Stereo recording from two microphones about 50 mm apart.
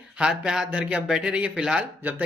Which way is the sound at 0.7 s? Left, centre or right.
Right.